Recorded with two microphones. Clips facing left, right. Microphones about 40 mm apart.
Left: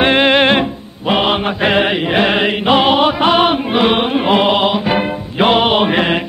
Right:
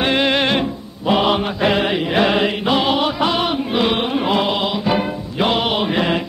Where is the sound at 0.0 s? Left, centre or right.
Left.